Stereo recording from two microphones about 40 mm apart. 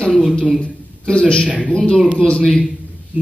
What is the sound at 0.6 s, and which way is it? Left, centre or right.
A man's voice, left.